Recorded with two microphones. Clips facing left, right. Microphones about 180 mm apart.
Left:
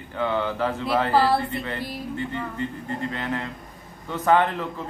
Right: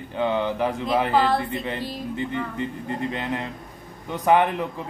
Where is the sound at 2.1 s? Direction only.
15° right (ahead or behind).